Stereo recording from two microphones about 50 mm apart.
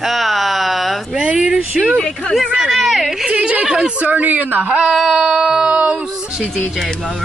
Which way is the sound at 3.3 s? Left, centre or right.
Right.